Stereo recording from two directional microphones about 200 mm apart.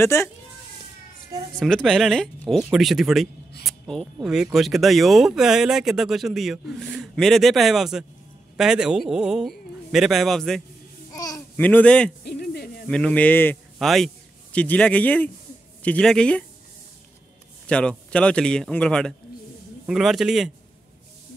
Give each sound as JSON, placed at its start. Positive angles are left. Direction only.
{"t": 0.0, "sound": "speech", "side_deg": 15}
{"t": 1.6, "sound": "speech", "side_deg": 5}
{"t": 11.1, "sound": "speech", "side_deg": 15}
{"t": 12.3, "sound": "hoot", "side_deg": 50}
{"t": 12.8, "sound": "a man's voice", "side_deg": 5}
{"t": 17.6, "sound": "speech", "side_deg": 5}